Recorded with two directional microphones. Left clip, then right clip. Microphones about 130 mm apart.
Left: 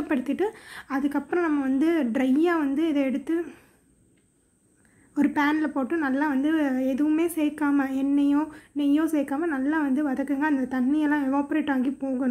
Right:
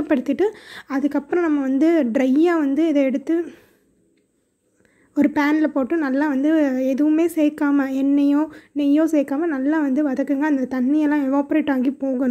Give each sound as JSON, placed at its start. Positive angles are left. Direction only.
{"t": 0.1, "sound": "a woman's voice", "side_deg": -35}
{"t": 5.1, "sound": "a woman's voice", "side_deg": -35}